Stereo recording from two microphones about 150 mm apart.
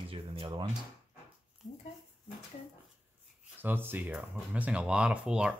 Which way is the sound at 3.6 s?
15° right (ahead or behind).